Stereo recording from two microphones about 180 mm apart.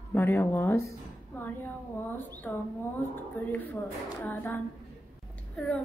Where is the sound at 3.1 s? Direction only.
10° left (ahead or behind).